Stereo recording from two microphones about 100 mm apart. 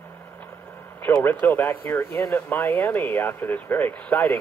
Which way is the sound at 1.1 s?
20° left (ahead or behind).